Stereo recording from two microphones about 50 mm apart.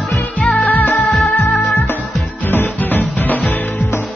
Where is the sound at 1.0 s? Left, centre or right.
Centre.